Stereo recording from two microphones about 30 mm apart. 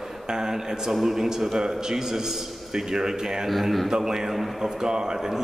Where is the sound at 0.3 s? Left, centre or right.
Right.